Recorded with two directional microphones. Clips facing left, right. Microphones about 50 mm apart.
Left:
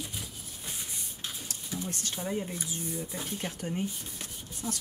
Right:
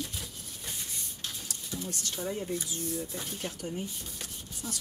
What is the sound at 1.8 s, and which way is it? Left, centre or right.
Speech, left.